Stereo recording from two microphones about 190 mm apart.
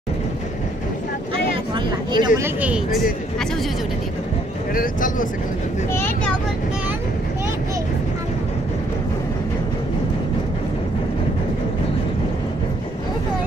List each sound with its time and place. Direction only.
2.1 s speech: 20° right (ahead or behind); by 3.4 s 5° right (ahead or behind)
4.7 s speech: 45° left (ahead or behind)
5.9 s speech: 10° left (ahead or behind)